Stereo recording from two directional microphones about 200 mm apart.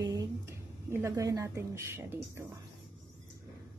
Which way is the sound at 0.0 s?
20° right (ahead or behind).